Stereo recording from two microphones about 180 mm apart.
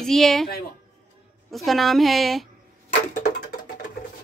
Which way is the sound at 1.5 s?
Centre (ahead or behind).